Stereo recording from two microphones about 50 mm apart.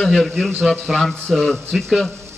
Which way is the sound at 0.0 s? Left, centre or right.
Centre.